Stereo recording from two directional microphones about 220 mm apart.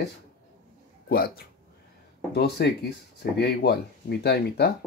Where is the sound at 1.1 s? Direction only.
45° left (ahead or behind).